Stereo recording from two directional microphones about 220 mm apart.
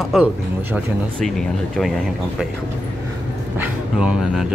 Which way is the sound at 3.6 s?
5° right (ahead or behind).